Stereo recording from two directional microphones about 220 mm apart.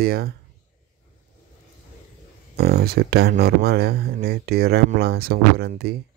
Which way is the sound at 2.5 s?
45° right (ahead or behind).